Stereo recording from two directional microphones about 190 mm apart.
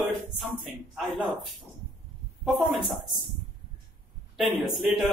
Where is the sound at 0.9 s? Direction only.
Centre (ahead or behind).